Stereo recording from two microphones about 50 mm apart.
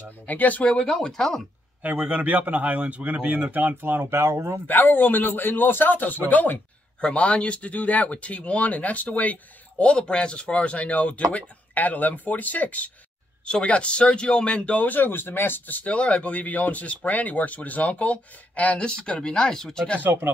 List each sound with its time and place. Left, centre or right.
0.3 s a man's voice: left
0.7 s speech: centre
1.8 s a man's voice: right
3.5 s a man's voice: right
4.1 s speech: right
4.6 s a man's voice: left
7.0 s speech: centre
18.9 s speech: centre
20.0 s speech: right